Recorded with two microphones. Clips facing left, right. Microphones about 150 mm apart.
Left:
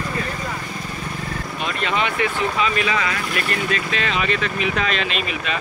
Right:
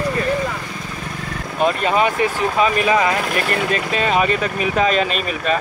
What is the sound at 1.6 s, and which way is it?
Speech, 40° right (ahead or behind).